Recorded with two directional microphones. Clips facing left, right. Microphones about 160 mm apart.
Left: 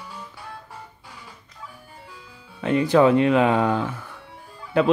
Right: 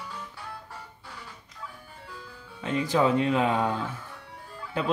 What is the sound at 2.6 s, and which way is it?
Speech, 65° left (ahead or behind).